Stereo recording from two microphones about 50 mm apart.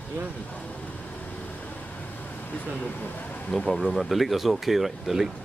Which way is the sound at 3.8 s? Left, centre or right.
Centre.